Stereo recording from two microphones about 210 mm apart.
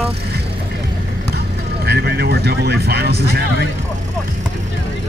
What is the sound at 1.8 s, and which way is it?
Speech, 50° right (ahead or behind).